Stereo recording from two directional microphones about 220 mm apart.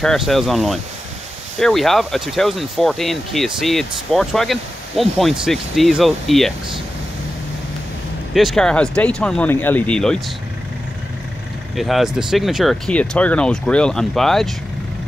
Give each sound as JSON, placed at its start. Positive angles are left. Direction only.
{"t": 0.0, "sound": "speech", "side_deg": 0}
{"t": 8.4, "sound": "speech", "side_deg": 0}
{"t": 11.7, "sound": "speech", "side_deg": 0}